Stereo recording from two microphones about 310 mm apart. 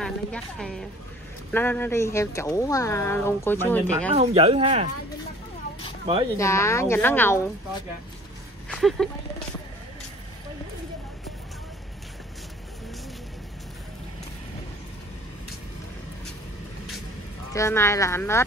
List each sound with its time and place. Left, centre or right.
0.0 s a woman's voice: centre
4.1 s speech: centre
6.3 s speech: centre
8.6 s speech: centre
17.5 s speech: centre